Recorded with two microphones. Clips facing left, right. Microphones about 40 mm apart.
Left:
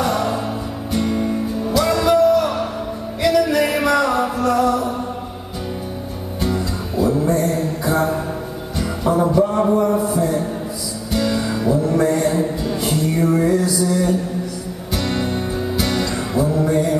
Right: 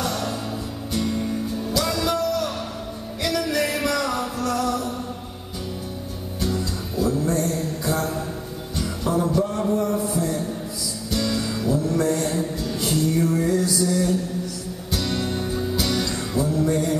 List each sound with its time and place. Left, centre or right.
0.0 s music: left
6.4 s music: left
10.0 s a sound: centre
11.1 s music: centre